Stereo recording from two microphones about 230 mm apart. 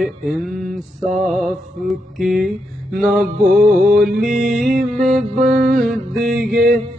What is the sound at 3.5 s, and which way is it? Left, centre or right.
Mantra, centre.